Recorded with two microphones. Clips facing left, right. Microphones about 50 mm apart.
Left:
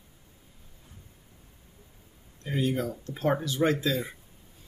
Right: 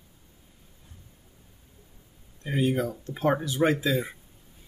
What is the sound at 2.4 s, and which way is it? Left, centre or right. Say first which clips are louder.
Speech: right 3 dB; centre.